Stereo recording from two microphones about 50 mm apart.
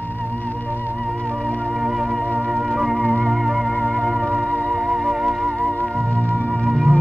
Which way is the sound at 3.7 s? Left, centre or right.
Left.